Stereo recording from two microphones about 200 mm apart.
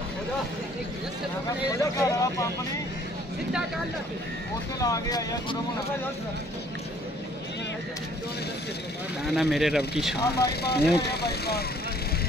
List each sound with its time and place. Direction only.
1.8 s speech: 15° left (ahead or behind)
4.7 s speech: 15° left (ahead or behind)
9.2 s speech: centre (ahead or behind)
10.1 s speech: 55° left (ahead or behind)